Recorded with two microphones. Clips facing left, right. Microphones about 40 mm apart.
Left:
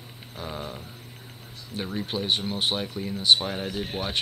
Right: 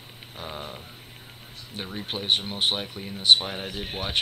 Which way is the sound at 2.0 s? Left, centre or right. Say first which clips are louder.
Right 2 dB; right.